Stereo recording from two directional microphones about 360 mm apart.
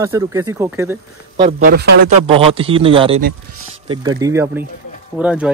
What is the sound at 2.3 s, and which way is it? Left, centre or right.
Speech, centre.